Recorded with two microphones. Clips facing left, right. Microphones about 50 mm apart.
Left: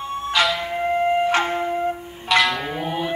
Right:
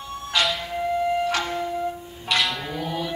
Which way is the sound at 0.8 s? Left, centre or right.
Left.